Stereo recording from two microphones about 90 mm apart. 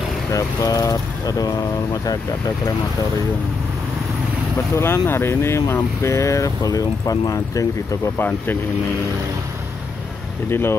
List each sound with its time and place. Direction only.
0.3 s speech: 40° left (ahead or behind)
4.7 s speech: 30° left (ahead or behind)
8.2 s speech: 20° left (ahead or behind)
10.5 s speech: 25° left (ahead or behind)